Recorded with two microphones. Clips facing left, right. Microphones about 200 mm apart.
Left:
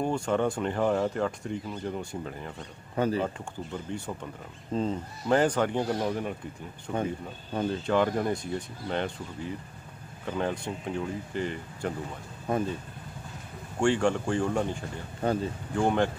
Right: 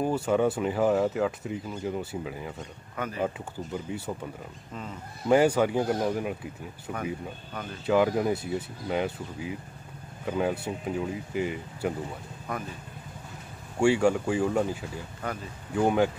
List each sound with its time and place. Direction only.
0.0 s speech: 5° right (ahead or behind)
3.0 s speech: 30° left (ahead or behind)
3.7 s speech: 5° right (ahead or behind)
4.7 s speech: 30° left (ahead or behind)
5.3 s speech: 10° right (ahead or behind)
12.5 s speech: 25° left (ahead or behind)
13.7 s speech: 10° right (ahead or behind)
15.2 s speech: 30° left (ahead or behind)
15.7 s speech: 5° right (ahead or behind)